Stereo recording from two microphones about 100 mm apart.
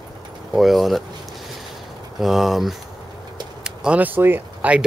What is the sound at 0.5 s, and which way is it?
Speech, centre (ahead or behind).